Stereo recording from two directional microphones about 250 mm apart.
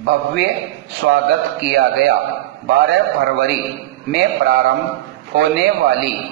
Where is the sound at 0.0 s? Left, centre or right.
Right.